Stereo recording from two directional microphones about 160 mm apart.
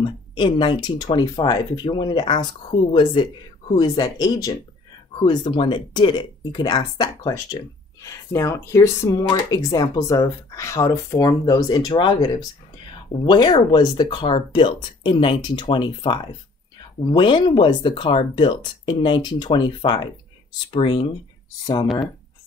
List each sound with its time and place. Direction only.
0.0 s speech: 30° left (ahead or behind)